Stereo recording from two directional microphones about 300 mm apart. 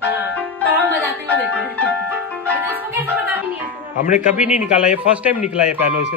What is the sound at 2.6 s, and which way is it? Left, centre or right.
Music, centre.